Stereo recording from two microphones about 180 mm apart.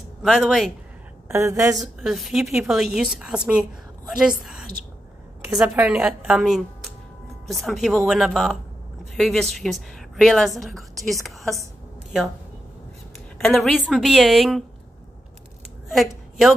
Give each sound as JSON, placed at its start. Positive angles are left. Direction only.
{"t": 0.2, "sound": "a woman's voice", "side_deg": -5}
{"t": 1.3, "sound": "a woman's voice", "side_deg": -15}
{"t": 2.0, "sound": "a woman's voice", "side_deg": 0}
{"t": 13.4, "sound": "a woman's voice", "side_deg": 0}
{"t": 15.9, "sound": "a woman's voice", "side_deg": 0}